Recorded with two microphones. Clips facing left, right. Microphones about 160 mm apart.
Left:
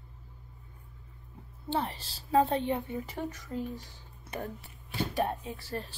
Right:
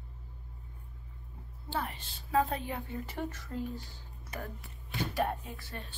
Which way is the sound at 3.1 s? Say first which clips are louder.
Left 1 dB; 15° left (ahead or behind).